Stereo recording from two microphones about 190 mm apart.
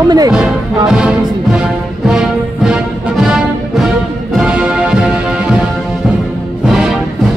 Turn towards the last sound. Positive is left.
turn(degrees=-5)  # may be behind; listen again after turning